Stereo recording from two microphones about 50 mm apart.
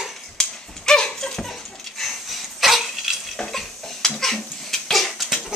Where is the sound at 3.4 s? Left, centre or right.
Centre.